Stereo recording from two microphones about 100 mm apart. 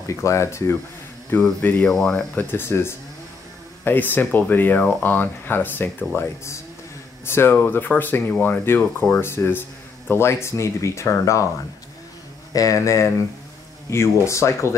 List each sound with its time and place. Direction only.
0.0 s speech: 30° left (ahead or behind)
1.9 s speech: 5° left (ahead or behind)
2.5 s speech: 25° left (ahead or behind)
12.5 s speech: 35° left (ahead or behind)